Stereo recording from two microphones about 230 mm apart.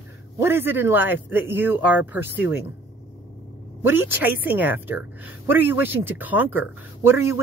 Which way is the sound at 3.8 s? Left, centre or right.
Centre.